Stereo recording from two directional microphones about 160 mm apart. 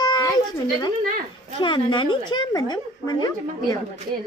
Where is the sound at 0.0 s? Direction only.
25° left (ahead or behind).